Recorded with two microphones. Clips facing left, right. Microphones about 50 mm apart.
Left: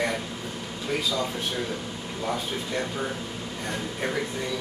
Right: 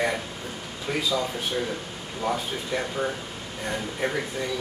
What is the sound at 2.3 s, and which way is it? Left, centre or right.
Speech, centre.